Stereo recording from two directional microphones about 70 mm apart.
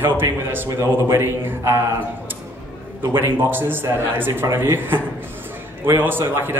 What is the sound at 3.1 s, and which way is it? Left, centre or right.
Speech, right.